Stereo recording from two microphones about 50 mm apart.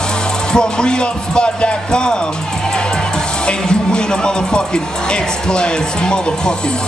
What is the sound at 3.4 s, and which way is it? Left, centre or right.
Speech, centre.